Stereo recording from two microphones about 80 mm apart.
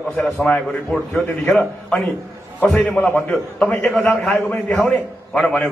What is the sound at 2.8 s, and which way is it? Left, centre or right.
Speech, left.